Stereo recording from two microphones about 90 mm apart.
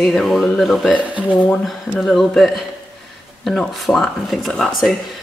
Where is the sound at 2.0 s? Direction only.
Centre (ahead or behind).